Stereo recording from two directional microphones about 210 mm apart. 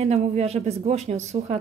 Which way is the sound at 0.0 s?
30° right (ahead or behind).